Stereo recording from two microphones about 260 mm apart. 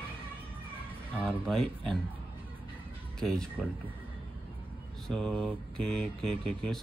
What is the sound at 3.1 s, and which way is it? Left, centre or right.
Speech, centre.